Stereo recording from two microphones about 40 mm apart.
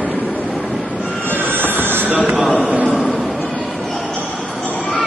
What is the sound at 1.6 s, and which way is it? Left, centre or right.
Music, right.